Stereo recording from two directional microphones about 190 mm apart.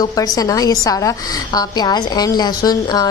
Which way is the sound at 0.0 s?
20° left (ahead or behind).